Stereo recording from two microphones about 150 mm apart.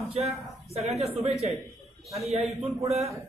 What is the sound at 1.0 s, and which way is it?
Speech, 45° right (ahead or behind).